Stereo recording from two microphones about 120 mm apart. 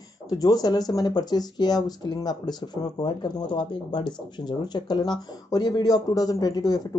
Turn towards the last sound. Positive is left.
turn(degrees=30)  # may be behind; listen again after turning